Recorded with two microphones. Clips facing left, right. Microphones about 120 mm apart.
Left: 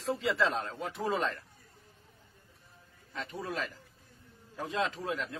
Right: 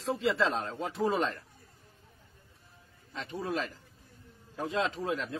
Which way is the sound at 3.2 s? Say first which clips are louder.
Right 3 dB; 25° right (ahead or behind).